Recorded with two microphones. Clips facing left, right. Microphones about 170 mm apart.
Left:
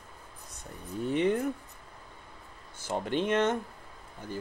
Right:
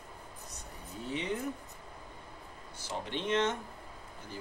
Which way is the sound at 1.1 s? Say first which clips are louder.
Left 9 dB; 55° left (ahead or behind).